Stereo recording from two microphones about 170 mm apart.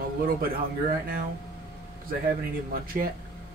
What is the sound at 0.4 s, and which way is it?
Speech, 60° right (ahead or behind).